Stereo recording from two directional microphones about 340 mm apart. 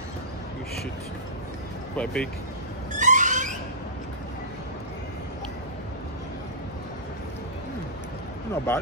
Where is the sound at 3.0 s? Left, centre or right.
Right.